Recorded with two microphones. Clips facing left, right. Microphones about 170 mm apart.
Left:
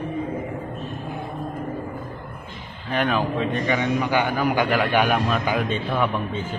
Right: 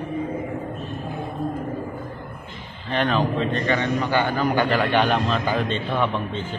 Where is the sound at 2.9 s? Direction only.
10° left (ahead or behind).